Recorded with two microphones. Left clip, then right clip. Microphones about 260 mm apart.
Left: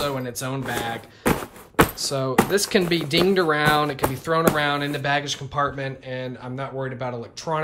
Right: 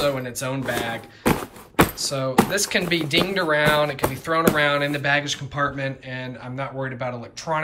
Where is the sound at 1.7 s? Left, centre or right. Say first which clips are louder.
Even; centre.